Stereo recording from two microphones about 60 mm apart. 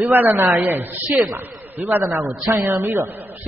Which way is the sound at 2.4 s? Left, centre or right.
Right.